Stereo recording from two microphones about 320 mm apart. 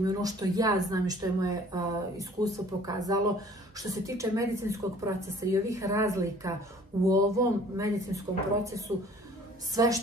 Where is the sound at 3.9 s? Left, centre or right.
Centre.